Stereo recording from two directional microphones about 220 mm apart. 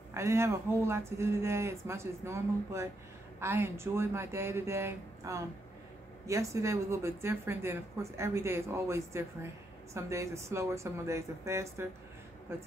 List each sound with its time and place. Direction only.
0.1 s speech: 10° right (ahead or behind)